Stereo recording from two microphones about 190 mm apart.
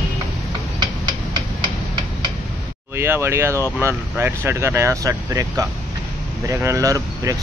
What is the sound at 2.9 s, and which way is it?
Speech, 10° right (ahead or behind).